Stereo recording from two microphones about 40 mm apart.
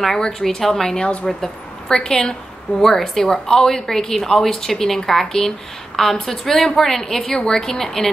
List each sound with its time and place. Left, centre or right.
0.0 s a woman's voice: centre
3.0 s a woman's voice: centre
7.2 s a woman's voice: left
7.8 s a woman's voice: centre